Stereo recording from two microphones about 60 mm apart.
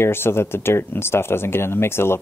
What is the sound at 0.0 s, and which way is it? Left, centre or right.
Speech, left.